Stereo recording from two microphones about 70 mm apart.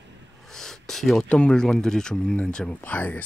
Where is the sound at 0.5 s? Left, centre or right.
Centre.